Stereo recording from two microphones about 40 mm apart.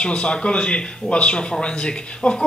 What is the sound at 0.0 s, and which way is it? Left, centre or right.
Speech, left.